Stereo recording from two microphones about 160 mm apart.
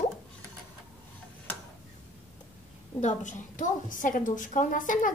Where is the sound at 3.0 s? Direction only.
50° left (ahead or behind).